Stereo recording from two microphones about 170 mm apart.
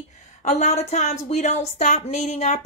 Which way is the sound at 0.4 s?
45° left (ahead or behind).